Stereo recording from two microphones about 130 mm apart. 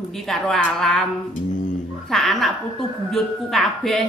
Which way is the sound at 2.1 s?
Centre (ahead or behind).